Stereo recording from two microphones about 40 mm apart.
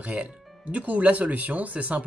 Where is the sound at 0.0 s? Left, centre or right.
Right.